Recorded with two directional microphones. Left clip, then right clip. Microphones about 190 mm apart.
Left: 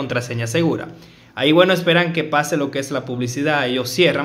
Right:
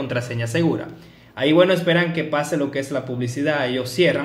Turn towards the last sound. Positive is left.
turn(degrees=20)  # may be behind; listen again after turning